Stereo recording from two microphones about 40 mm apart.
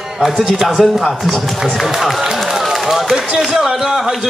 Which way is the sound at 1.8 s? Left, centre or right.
Centre.